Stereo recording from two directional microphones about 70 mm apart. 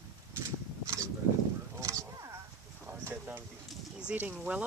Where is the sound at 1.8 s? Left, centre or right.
Right.